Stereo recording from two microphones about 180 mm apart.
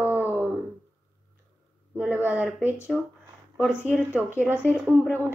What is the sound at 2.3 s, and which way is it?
Speech, 5° right (ahead or behind).